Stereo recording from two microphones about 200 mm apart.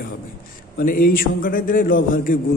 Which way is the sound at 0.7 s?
45° left (ahead or behind).